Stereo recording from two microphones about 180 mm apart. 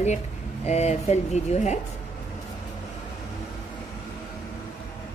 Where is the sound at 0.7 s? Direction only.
40° left (ahead or behind).